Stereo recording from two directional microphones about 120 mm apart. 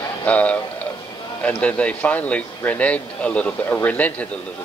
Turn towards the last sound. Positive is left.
turn(degrees=10)  # may be behind; listen again after turning